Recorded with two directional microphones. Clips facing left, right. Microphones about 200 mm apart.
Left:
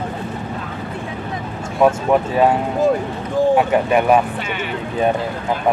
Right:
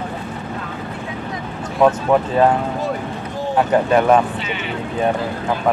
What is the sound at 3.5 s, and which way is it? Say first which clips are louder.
Speech: even; 10° left (ahead or behind).